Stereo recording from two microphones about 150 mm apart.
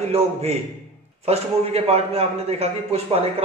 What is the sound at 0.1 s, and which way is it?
A man's voice, 45° right (ahead or behind).